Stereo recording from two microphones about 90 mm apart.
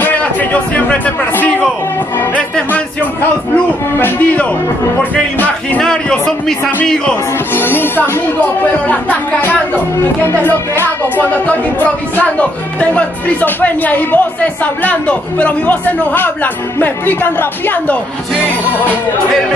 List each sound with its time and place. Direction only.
0.0 s a sound: 20° left (ahead or behind)
2.3 s music: 15° left (ahead or behind)
4.0 s speech: 15° left (ahead or behind)
5.8 s speech: 5° left (ahead or behind)
7.5 s speech: 25° left (ahead or behind)